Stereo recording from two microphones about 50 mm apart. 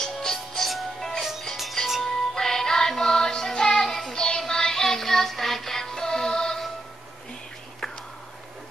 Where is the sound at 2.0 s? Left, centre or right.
Centre.